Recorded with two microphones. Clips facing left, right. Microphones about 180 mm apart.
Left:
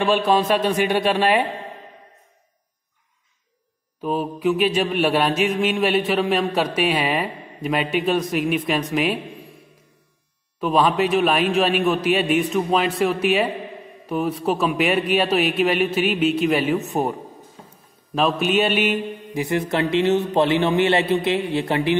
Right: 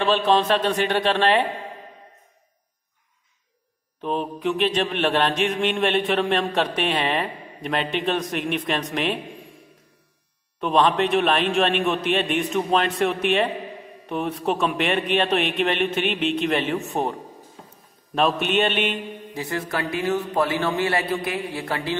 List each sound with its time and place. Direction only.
0.0 s a man's voice: 10° left (ahead or behind)
4.0 s mantra: 5° left (ahead or behind)
10.6 s mantra: 5° left (ahead or behind)
16.9 s a man's voice: 10° left (ahead or behind)
18.1 s mantra: centre (ahead or behind); by 21.9 s 20° left (ahead or behind)